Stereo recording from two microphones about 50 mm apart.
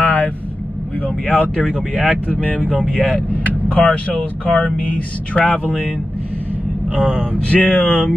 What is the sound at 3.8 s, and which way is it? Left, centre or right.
Speech, left.